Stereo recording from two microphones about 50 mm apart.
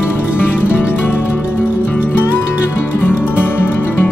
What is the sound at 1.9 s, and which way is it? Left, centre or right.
Music, left.